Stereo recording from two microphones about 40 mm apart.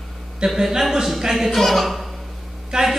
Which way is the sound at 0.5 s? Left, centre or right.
Centre.